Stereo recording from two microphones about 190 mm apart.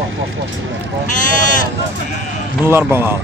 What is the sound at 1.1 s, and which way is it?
Speech, 40° left (ahead or behind).